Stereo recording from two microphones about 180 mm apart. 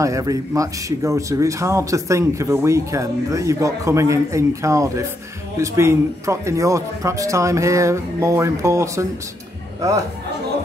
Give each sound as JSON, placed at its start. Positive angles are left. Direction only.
{"t": 0.0, "sound": "speech", "side_deg": -20}